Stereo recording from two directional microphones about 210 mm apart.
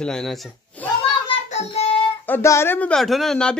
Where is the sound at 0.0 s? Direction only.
Centre (ahead or behind).